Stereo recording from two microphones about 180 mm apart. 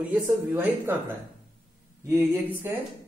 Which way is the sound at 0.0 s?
10° right (ahead or behind).